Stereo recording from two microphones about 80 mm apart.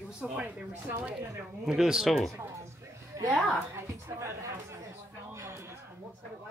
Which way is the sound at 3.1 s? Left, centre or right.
Right.